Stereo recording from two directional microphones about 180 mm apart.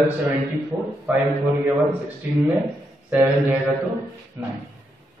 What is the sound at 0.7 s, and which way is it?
Mantra, 10° right (ahead or behind).